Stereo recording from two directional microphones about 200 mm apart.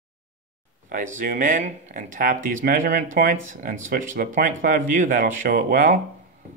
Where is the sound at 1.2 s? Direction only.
40° right (ahead or behind).